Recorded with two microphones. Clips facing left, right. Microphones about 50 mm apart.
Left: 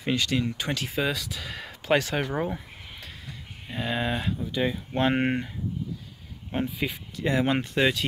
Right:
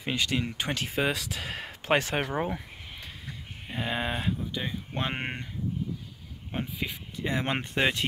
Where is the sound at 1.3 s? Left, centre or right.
Right.